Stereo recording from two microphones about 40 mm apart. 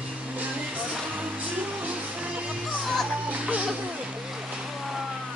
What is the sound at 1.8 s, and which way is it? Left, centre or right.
Music, right.